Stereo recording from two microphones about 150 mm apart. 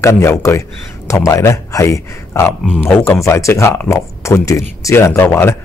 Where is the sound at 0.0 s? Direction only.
20° left (ahead or behind).